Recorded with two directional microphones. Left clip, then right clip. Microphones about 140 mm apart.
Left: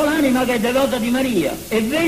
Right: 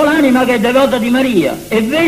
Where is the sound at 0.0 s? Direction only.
30° right (ahead or behind).